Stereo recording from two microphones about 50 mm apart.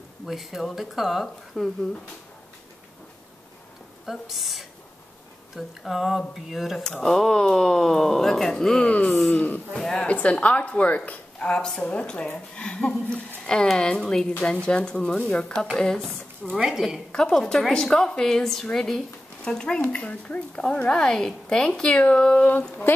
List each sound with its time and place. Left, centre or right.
0.3 s speech: centre
1.2 s speech: centre
4.0 s speech: centre
6.8 s speech: centre
8.8 s speech: left
9.8 s speech: centre
10.0 s a woman's voice: left; by 16.5 s centre
16.6 s a woman's voice: centre
17.1 s a woman's voice: centre
22.9 s speech: left